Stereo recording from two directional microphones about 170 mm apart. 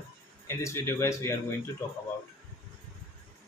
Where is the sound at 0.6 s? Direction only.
15° left (ahead or behind).